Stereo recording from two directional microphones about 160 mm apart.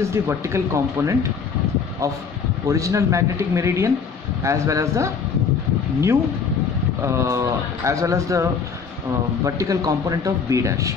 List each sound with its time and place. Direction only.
0.0 s speech: 15° right (ahead or behind)
2.7 s speech: 20° right (ahead or behind)
7.0 s speech: 15° right (ahead or behind)